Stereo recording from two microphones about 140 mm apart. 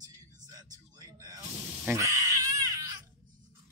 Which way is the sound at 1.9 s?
20° right (ahead or behind).